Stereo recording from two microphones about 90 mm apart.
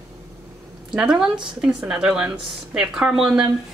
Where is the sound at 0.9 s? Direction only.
5° right (ahead or behind).